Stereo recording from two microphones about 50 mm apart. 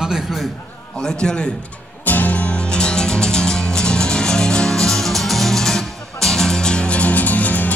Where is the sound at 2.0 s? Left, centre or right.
Left.